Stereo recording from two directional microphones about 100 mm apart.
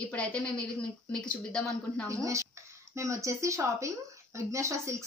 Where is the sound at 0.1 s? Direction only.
10° left (ahead or behind).